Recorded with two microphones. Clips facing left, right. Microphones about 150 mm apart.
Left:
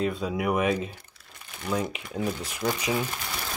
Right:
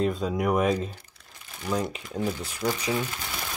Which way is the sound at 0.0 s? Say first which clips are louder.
Right 2 dB; centre (ahead or behind).